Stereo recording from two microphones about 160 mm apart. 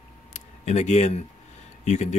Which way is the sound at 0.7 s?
45° left (ahead or behind).